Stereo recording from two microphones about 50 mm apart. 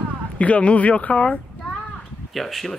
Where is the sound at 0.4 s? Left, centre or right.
Left.